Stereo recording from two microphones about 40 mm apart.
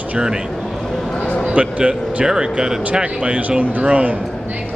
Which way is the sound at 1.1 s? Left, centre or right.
Left.